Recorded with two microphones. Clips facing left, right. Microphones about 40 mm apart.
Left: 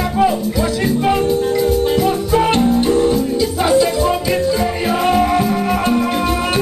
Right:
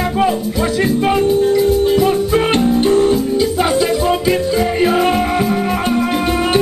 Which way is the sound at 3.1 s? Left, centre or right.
Right.